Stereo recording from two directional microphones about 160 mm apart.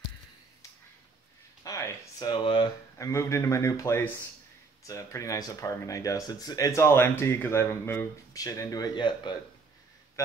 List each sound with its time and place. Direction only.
1.6 s speech: 20° left (ahead or behind)
3.0 s speech: 20° left (ahead or behind)